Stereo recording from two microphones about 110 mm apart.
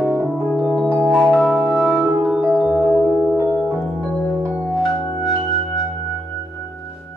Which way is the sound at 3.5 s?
Centre (ahead or behind).